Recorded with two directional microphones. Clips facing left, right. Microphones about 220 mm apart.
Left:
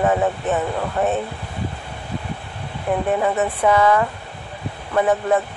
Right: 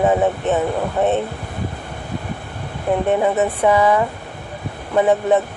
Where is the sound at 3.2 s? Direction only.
20° right (ahead or behind).